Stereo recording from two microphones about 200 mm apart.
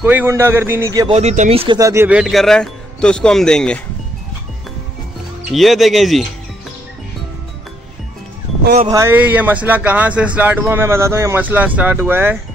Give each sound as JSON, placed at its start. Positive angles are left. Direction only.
{"t": 0.0, "sound": "a man's voice", "side_deg": -10}
{"t": 1.0, "sound": "speech", "side_deg": -35}
{"t": 1.8, "sound": "speech", "side_deg": -15}
{"t": 5.5, "sound": "speech", "side_deg": 0}
{"t": 8.8, "sound": "a man's voice", "side_deg": -15}